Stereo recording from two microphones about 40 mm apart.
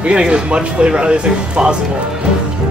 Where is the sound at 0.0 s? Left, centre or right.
Right.